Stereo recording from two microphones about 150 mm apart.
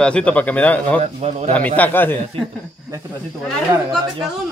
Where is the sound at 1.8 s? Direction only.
15° left (ahead or behind).